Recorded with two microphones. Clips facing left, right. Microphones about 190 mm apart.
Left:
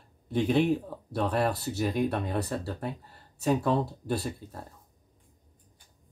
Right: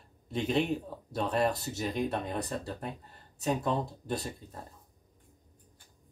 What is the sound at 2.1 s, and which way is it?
Speech, 20° right (ahead or behind).